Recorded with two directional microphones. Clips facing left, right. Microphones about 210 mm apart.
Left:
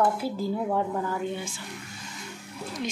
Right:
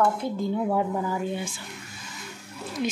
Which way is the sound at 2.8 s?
10° right (ahead or behind).